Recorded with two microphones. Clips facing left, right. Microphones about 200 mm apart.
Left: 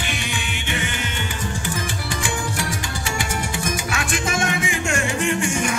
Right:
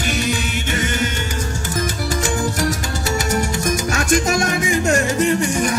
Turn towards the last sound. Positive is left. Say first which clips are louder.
# right 5 dB
turn(degrees=-40)  # may be behind; listen again after turning